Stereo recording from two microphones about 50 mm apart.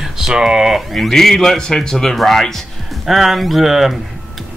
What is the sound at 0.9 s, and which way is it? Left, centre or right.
Speech, centre.